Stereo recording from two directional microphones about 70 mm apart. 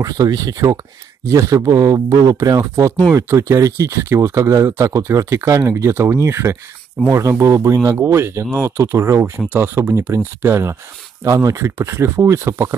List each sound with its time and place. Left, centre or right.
0.0 s speech: right
3.2 s speech: right
8.0 s speech: right
11.2 s speech: right